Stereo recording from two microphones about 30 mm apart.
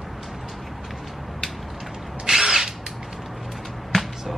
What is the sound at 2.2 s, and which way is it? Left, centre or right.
Drill, centre.